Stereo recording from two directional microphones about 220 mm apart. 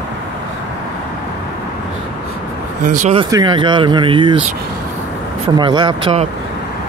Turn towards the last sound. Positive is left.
turn(degrees=-25)  # may be behind; listen again after turning